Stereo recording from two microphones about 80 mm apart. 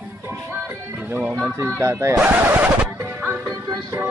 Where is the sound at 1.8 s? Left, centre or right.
Right.